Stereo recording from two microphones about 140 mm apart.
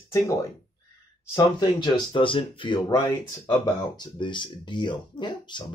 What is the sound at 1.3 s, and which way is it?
Speech, 30° left (ahead or behind).